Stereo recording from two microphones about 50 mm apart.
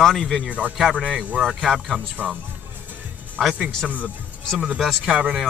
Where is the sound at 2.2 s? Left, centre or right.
Right.